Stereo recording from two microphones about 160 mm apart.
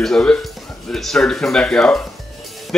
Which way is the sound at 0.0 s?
5° left (ahead or behind).